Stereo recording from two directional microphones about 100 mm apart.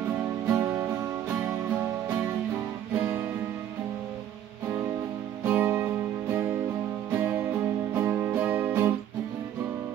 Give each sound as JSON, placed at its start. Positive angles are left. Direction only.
{"t": 0.5, "sound": "music", "side_deg": -25}
{"t": 5.4, "sound": "music", "side_deg": -20}
{"t": 7.2, "sound": "music", "side_deg": -20}